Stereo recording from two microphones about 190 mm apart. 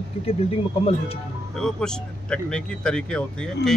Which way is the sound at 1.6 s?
5° left (ahead or behind).